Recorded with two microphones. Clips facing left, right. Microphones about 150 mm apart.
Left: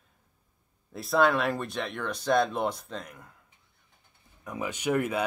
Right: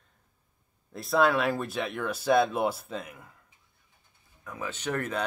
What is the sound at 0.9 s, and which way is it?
Speech, centre (ahead or behind).